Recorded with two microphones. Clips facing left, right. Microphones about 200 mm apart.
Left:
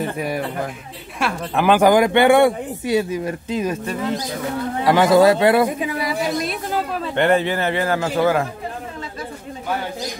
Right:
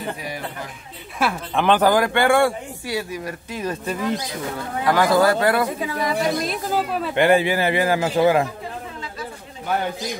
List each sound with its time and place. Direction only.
1.2 s speech: 5° left (ahead or behind); by 3.7 s 20° left (ahead or behind)
4.8 s speech: 25° left (ahead or behind); by 8.5 s 20° right (ahead or behind)